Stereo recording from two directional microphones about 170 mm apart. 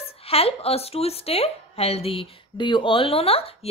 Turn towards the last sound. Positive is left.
turn(degrees=35)  # may be behind; listen again after turning